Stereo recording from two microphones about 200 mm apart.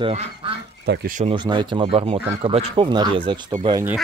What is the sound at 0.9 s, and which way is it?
Speech, 45° right (ahead or behind).